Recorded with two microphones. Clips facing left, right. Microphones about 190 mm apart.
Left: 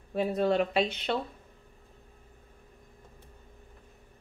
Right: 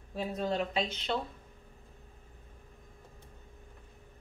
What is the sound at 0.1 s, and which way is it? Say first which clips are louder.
Speech: left 7 dB; 65° left (ahead or behind).